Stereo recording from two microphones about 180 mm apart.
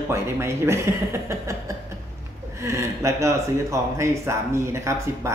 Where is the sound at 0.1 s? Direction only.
15° right (ahead or behind).